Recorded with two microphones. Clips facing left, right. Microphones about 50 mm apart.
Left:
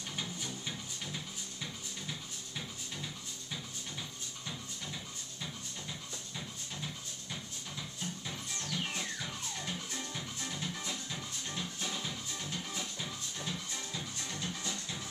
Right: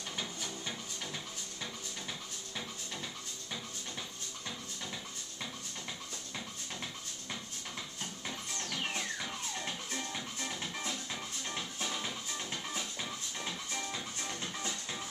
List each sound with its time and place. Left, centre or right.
8.5 s music: right